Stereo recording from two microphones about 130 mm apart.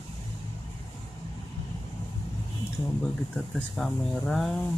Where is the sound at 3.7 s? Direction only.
5° left (ahead or behind).